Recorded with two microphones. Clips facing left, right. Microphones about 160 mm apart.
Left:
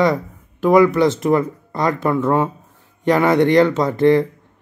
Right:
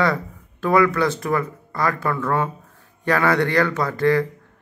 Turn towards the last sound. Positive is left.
turn(degrees=20)  # may be behind; listen again after turning